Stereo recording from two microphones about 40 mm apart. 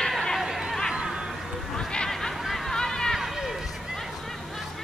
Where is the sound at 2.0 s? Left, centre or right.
Centre.